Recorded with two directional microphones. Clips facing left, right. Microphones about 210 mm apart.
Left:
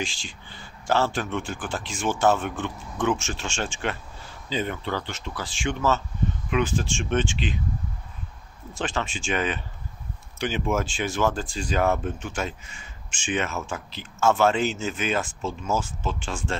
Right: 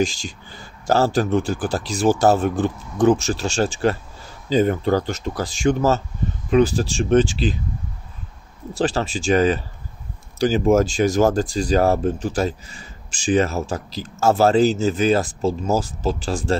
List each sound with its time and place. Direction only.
0.0 s speech: 40° right (ahead or behind)
8.7 s speech: 35° right (ahead or behind)